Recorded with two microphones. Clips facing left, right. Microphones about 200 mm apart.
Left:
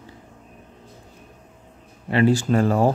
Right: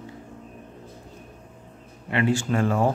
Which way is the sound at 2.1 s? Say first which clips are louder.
Left 5 dB; 35° left (ahead or behind).